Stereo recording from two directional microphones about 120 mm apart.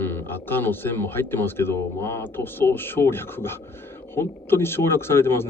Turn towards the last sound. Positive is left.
turn(degrees=20)  # may be behind; listen again after turning